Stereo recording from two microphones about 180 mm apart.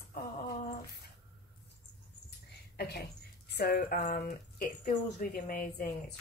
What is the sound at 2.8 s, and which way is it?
Speech, 65° left (ahead or behind).